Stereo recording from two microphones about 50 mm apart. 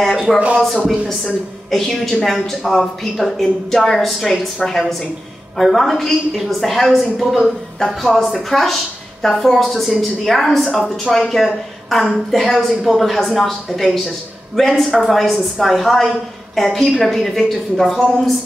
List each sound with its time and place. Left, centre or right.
0.3 s a woman's voice: centre